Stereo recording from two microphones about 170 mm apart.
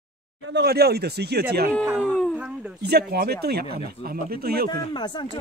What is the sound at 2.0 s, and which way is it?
Dog, 5° left (ahead or behind).